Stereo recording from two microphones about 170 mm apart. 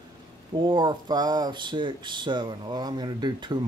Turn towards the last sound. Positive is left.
turn(degrees=-25)  # may be behind; listen again after turning